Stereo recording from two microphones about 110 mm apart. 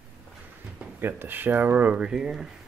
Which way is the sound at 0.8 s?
20° right (ahead or behind).